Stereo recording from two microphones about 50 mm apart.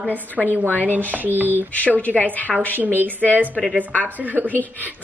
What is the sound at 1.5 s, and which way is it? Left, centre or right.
Speech, left.